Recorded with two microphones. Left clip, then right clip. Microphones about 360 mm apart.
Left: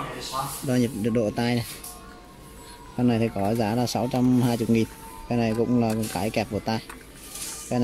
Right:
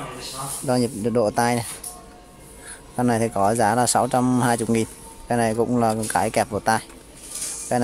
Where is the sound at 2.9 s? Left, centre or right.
Right.